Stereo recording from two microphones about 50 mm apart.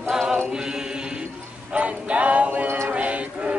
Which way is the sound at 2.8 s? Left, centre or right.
Right.